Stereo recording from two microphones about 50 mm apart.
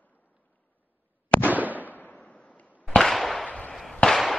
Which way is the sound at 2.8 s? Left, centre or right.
Centre.